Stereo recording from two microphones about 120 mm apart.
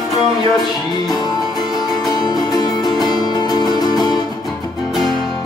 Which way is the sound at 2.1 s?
35° left (ahead or behind).